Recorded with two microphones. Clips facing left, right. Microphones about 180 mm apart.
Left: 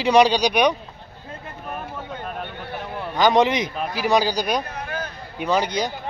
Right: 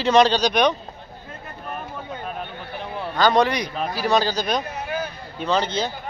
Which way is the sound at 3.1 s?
15° left (ahead or behind).